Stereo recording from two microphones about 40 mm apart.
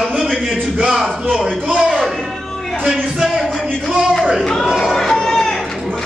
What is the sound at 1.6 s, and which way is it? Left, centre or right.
Speech, right.